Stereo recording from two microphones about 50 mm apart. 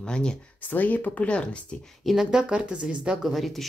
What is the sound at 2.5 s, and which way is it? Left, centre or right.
Speech, right.